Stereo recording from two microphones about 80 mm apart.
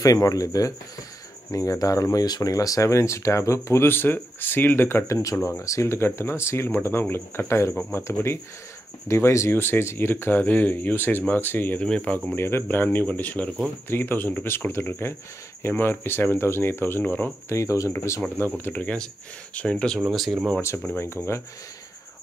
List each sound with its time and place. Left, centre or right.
0.0 s speech: left
11.8 s speech: centre
12.4 s speech: left
17.6 s speech: left
18.6 s speech: centre
21.0 s speech: left